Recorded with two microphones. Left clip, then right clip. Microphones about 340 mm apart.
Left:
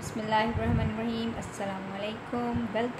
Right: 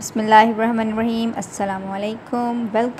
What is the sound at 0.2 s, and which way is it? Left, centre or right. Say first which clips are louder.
A woman's voice: right 15 dB; right.